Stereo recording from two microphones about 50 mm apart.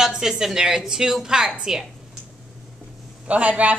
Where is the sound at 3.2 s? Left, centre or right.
Right.